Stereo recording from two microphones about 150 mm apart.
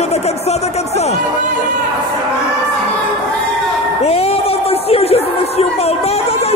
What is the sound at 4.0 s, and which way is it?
Speech, 45° left (ahead or behind).